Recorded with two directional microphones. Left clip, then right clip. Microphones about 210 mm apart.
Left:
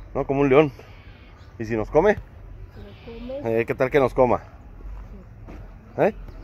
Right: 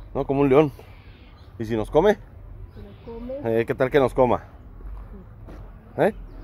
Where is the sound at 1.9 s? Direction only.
25° right (ahead or behind).